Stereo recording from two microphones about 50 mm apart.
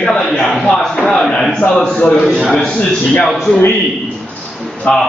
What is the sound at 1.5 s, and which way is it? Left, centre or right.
Speech, centre.